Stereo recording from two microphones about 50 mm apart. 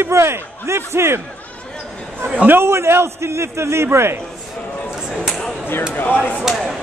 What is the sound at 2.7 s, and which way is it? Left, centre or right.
Speech, right.